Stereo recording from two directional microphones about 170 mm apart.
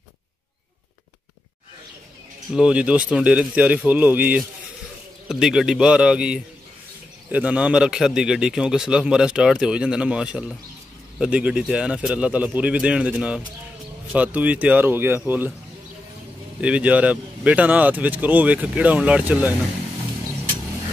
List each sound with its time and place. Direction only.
2.5 s a man's voice: 5° right (ahead or behind)
16.6 s speech: 5° right (ahead or behind)